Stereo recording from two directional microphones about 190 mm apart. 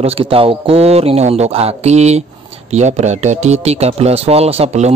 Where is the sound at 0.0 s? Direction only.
30° right (ahead or behind).